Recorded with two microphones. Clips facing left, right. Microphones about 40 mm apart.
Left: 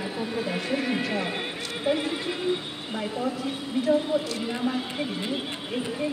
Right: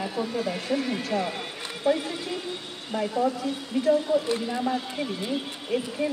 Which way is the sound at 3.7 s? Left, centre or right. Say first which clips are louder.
Right 1 dB; centre.